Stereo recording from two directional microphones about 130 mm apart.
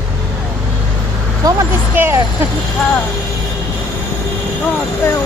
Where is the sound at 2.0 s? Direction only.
20° right (ahead or behind).